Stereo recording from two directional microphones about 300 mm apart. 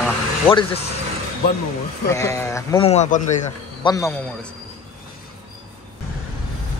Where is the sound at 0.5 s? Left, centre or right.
Centre.